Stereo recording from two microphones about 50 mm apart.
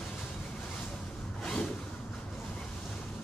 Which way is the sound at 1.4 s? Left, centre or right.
Centre.